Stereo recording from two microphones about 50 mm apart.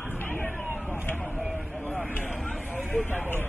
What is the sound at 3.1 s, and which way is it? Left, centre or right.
Vehicle, left.